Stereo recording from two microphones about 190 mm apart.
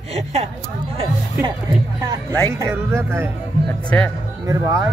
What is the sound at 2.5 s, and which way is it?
Speech, 15° right (ahead or behind).